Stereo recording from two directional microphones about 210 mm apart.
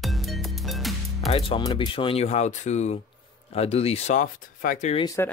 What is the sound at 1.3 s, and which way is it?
Speech, 20° left (ahead or behind).